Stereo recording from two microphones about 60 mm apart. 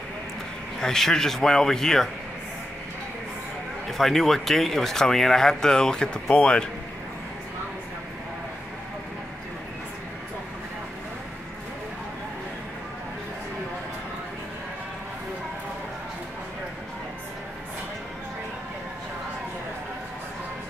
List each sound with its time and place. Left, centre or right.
0.7 s speech: centre
4.0 s speech: centre